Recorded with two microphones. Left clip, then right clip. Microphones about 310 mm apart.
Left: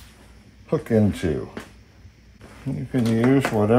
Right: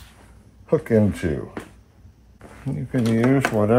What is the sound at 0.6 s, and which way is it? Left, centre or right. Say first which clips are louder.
Speech: right 2 dB; centre.